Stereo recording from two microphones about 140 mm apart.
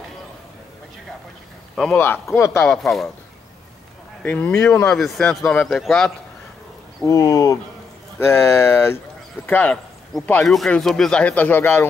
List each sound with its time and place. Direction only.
1.8 s speech: 10° left (ahead or behind)
2.6 s a man's voice: centre (ahead or behind)
4.2 s speech: 10° left (ahead or behind)
4.8 s a man's voice: centre (ahead or behind)
7.1 s speech: 20° left (ahead or behind)